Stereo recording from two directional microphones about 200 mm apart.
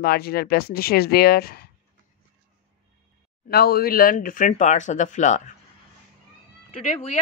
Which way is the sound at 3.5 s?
50° left (ahead or behind).